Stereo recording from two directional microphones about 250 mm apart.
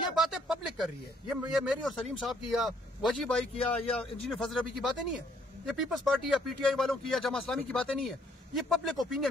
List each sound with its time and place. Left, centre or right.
0.2 s speech: centre